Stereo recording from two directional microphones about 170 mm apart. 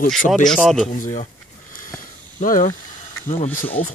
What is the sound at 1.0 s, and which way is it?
Speech, 45° left (ahead or behind).